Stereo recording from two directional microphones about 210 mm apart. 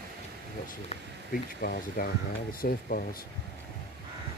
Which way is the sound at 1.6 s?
45° left (ahead or behind).